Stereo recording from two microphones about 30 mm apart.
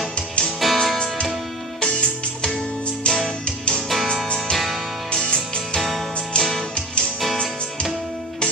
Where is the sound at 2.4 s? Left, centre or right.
Left.